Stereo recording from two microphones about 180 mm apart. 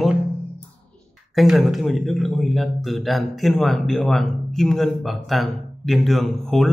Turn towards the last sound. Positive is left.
turn(degrees=0)  # may be behind; listen again after turning